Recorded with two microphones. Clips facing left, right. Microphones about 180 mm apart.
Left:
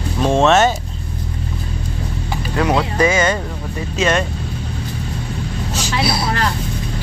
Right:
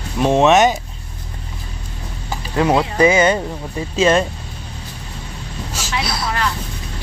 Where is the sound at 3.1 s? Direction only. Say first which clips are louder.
Right 3 dB; 15° right (ahead or behind).